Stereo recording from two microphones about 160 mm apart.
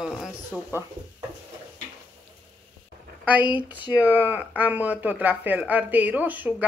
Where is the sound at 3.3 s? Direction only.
10° right (ahead or behind).